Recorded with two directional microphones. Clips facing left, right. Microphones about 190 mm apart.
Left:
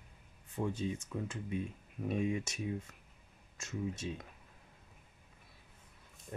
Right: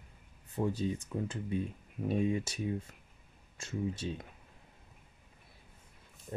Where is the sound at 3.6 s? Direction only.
30° right (ahead or behind).